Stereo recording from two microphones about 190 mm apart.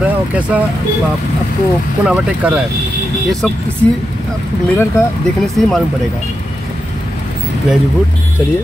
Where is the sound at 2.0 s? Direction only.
5° right (ahead or behind).